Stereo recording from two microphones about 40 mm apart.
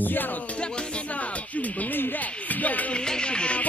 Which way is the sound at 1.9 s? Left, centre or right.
Left.